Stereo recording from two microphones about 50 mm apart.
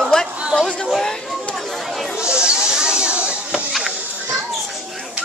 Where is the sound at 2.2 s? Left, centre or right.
Centre.